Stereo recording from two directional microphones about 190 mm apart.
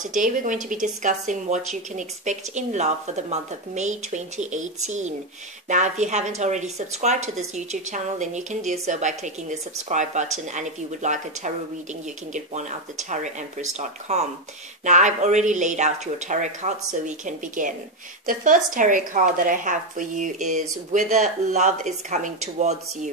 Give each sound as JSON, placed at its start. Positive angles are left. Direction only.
{"t": 0.1, "sound": "speech", "side_deg": -45}